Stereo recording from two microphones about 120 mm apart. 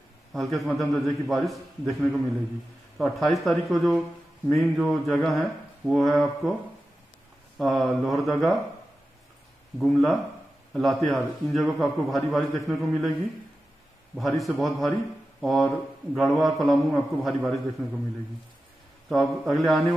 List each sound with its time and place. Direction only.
0.3 s a man's voice: centre (ahead or behind)
7.5 s a man's voice: centre (ahead or behind)
9.8 s a man's voice: centre (ahead or behind)
14.1 s a man's voice: centre (ahead or behind)
19.0 s a man's voice: 5° left (ahead or behind)